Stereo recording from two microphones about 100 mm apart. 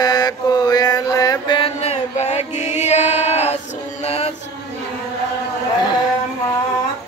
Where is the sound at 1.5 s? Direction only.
65° left (ahead or behind); by 2.5 s 90° left.